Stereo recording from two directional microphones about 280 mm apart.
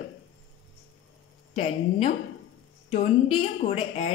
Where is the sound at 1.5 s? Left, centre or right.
Left.